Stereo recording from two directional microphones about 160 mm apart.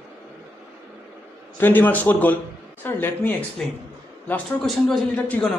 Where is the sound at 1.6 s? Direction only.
10° left (ahead or behind).